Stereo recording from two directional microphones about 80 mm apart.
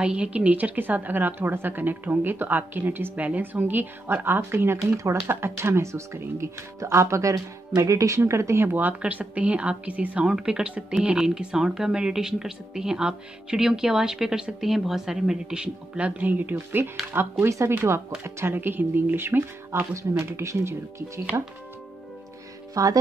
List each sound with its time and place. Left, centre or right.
0.0 s a woman's voice: centre; by 8.6 s right
8.6 s a woman's voice: right
22.8 s music: right